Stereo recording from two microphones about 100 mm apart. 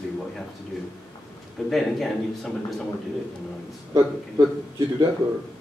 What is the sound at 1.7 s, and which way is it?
A man's voice, centre (ahead or behind).